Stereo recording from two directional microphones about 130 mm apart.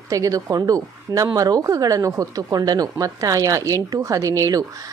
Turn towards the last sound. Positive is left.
turn(degrees=-25)  # may be behind; listen again after turning